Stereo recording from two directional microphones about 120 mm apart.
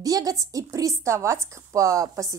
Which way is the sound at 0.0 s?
30° right (ahead or behind).